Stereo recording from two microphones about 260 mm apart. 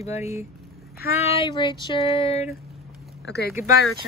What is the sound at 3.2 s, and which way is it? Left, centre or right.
Speech, left.